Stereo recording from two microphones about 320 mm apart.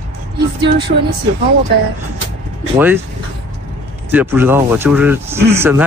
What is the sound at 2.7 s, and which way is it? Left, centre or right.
Speech, centre.